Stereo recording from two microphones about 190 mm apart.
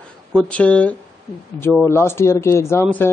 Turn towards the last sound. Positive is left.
turn(degrees=10)  # may be behind; listen again after turning